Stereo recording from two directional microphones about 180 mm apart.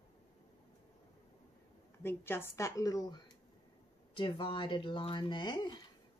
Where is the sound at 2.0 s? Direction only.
15° left (ahead or behind).